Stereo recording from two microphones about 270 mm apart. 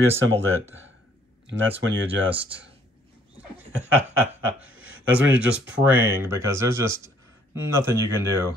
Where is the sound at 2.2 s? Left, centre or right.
Centre.